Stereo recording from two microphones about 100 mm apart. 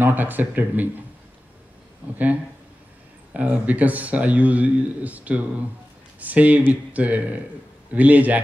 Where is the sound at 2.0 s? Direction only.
20° right (ahead or behind).